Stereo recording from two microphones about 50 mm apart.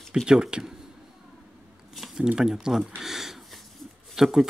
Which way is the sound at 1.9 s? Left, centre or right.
Centre.